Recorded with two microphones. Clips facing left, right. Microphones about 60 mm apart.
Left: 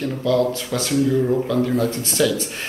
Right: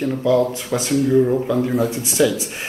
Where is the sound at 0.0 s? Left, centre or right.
Centre.